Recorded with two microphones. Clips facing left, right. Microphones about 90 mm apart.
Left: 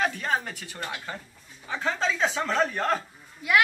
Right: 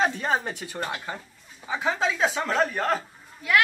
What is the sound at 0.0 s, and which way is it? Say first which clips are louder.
Speech: right 2 dB; 25° right (ahead or behind).